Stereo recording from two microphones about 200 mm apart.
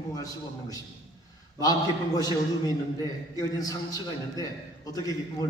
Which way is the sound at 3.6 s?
20° left (ahead or behind).